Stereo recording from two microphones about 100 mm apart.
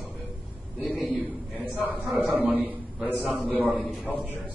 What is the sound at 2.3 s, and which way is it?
A man's voice, 15° right (ahead or behind).